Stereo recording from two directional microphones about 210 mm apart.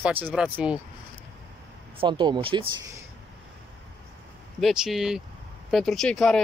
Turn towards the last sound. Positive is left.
turn(degrees=0)  # may be behind; listen again after turning